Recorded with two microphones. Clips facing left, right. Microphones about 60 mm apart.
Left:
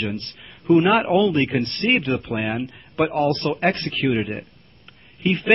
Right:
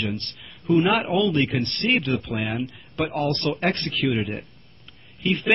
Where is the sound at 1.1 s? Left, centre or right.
Centre.